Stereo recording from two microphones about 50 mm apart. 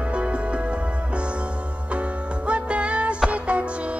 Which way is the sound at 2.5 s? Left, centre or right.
Right.